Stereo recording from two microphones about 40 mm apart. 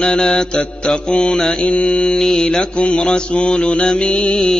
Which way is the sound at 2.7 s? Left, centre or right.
Left.